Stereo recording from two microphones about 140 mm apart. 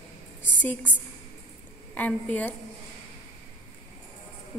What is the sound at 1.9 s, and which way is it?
Speech, 10° left (ahead or behind).